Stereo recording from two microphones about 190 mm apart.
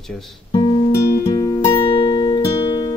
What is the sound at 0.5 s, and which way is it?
Music, 25° left (ahead or behind).